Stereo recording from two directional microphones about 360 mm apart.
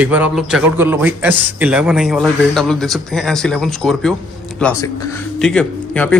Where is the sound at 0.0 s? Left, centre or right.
Centre.